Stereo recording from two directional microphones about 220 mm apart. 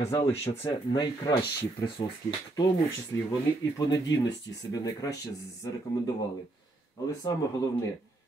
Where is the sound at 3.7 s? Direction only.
15° left (ahead or behind).